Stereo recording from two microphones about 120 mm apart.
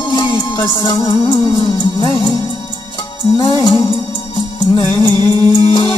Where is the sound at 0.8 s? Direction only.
40° left (ahead or behind).